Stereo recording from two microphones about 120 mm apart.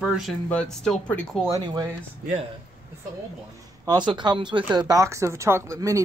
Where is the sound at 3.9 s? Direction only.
40° right (ahead or behind).